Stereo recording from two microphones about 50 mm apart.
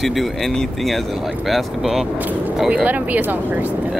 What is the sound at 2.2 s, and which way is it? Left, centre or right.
Speech, right.